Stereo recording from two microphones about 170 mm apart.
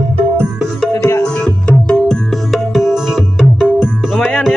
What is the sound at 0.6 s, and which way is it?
Music, centre (ahead or behind).